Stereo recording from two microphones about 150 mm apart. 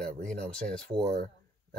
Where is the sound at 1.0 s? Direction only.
90° right.